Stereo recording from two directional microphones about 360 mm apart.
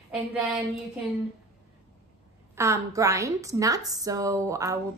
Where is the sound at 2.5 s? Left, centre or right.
Centre.